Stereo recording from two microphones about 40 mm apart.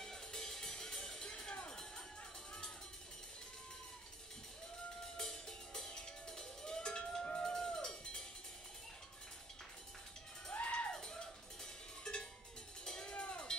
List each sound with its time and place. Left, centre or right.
0.0 s music: centre
5.1 s music: centre
7.4 s cowbell: centre
10.5 s music: left
10.9 s cowbell: centre
13.1 s a sound: left